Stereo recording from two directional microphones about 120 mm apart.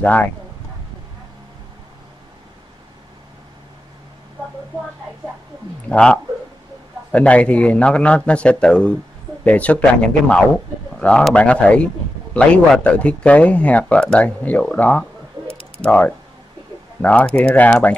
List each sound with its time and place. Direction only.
0.0 s speech: 15° left (ahead or behind)
5.9 s speech: 10° left (ahead or behind)
15.4 s a sound: 35° right (ahead or behind)
15.8 s speech: 10° left (ahead or behind)